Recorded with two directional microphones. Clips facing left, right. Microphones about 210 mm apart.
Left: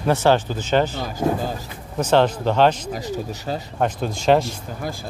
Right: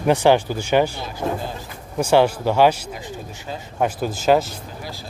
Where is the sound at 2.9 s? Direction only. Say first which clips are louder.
Left 6 dB; 40° left (ahead or behind).